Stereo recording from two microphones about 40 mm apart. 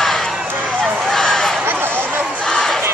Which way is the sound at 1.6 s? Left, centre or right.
Right.